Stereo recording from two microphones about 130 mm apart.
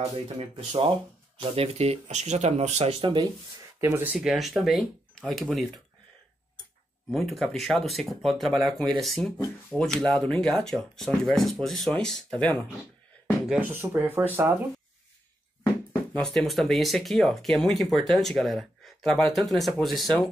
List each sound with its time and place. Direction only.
0.1 s speech: 50° right (ahead or behind)
3.8 s speech: 20° right (ahead or behind)
4.1 s speech: 5° right (ahead or behind)
7.1 s speech: centre (ahead or behind)
13.5 s speech: 15° right (ahead or behind)
15.6 s speech: 10° left (ahead or behind)